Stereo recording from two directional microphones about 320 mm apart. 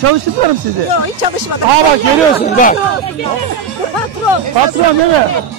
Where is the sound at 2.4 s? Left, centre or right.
Left.